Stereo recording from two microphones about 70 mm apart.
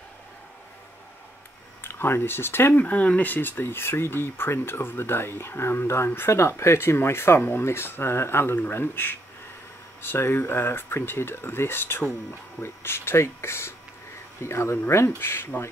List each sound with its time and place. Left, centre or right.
1.8 s speech: left
2.8 s speech: left